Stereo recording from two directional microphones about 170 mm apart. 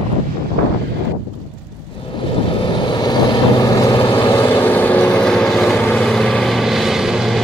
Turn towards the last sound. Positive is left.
turn(degrees=0)  # may be behind; listen again after turning